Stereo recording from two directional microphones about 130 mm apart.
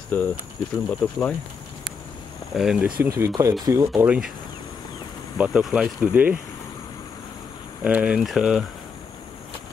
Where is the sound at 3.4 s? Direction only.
20° right (ahead or behind).